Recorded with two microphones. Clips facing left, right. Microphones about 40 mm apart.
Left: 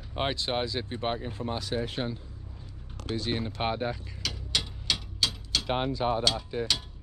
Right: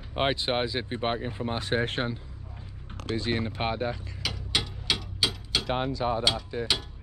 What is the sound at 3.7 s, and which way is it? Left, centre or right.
Speech, centre.